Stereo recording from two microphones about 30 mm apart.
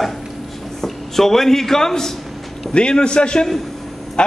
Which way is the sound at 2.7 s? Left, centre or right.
Left.